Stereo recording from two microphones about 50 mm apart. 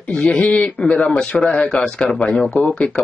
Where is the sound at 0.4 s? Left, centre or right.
Left.